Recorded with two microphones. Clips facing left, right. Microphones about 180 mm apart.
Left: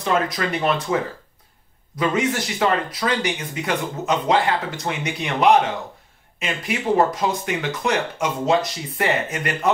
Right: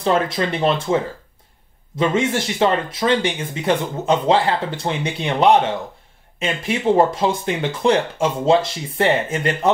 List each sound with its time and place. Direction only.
0.0 s speech: 30° right (ahead or behind)